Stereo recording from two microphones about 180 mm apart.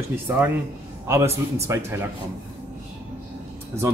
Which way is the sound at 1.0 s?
15° right (ahead or behind).